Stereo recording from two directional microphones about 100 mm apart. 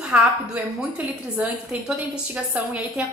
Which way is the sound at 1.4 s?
10° right (ahead or behind).